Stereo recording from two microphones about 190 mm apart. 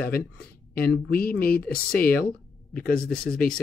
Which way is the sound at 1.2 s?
50° left (ahead or behind).